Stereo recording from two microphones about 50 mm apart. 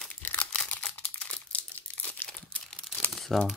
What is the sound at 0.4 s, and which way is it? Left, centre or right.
Crumpling, left.